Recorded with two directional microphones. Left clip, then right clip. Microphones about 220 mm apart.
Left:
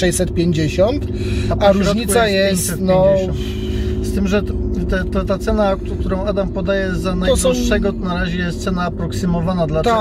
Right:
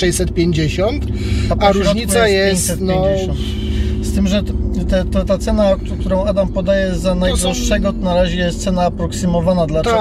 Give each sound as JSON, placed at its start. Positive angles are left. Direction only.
{"t": 0.0, "sound": "speech", "side_deg": 20}
{"t": 4.1, "sound": "speech", "side_deg": -20}